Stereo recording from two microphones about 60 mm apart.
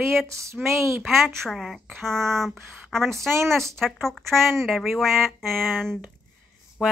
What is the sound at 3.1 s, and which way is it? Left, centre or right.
Speech, right.